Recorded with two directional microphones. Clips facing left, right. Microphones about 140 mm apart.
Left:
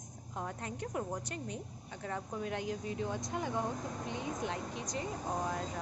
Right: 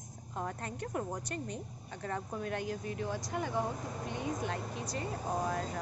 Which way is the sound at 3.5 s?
5° right (ahead or behind).